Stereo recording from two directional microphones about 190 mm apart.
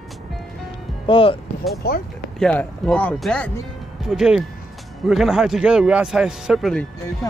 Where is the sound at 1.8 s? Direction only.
55° left (ahead or behind).